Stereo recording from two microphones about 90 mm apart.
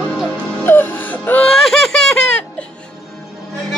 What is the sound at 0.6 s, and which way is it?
Music, 20° left (ahead or behind).